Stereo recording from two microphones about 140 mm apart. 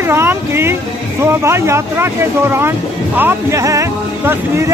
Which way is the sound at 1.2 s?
20° right (ahead or behind).